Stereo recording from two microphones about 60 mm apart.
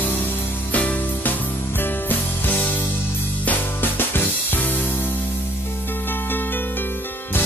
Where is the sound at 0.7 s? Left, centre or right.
Left.